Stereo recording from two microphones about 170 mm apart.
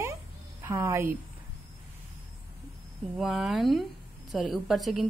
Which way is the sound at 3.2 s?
Centre (ahead or behind).